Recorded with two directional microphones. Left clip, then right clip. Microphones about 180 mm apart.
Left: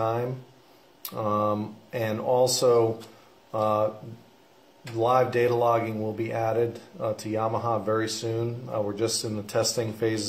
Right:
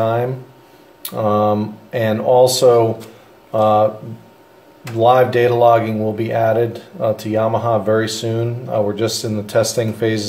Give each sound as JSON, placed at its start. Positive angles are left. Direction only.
{"t": 0.0, "sound": "speech", "side_deg": 20}
{"t": 4.9, "sound": "speech", "side_deg": 20}